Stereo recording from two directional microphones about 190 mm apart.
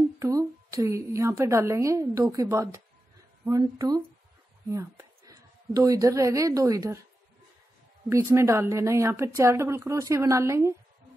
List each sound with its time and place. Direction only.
0.2 s a woman's voice: 15° right (ahead or behind)
8.1 s a woman's voice: 15° right (ahead or behind)